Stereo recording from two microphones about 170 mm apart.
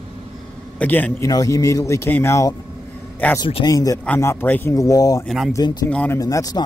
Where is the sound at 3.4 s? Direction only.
25° left (ahead or behind).